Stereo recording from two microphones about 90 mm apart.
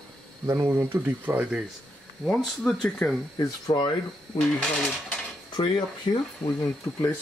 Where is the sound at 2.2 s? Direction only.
Centre (ahead or behind).